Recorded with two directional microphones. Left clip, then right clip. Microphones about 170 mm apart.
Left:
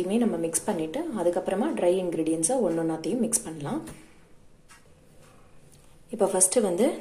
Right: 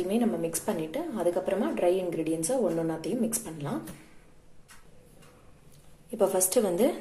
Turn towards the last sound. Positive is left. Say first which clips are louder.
# left 1 dB
turn(degrees=5)  # may be behind; listen again after turning